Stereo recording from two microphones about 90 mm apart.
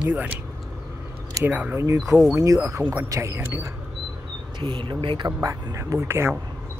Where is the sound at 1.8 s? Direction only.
35° right (ahead or behind).